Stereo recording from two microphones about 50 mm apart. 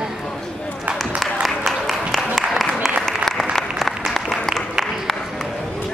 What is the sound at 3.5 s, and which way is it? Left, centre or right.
Applause, centre.